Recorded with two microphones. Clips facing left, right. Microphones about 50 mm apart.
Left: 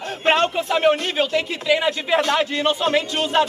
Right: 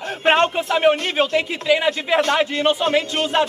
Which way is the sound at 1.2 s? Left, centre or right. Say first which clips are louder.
Right 2 dB; centre.